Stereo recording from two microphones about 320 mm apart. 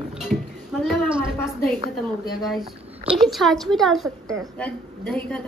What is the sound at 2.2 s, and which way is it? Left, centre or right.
A woman's voice, centre.